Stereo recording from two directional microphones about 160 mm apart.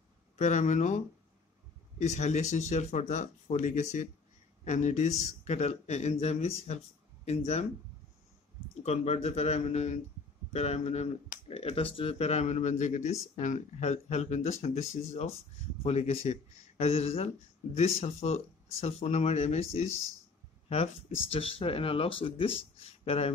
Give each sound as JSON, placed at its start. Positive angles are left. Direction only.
{"t": 0.4, "sound": "speech", "side_deg": 50}
{"t": 8.8, "sound": "speech", "side_deg": 40}